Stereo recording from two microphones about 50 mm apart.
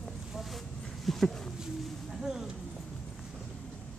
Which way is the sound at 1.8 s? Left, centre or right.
Centre.